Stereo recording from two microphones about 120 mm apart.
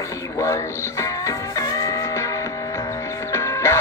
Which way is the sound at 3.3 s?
25° left (ahead or behind).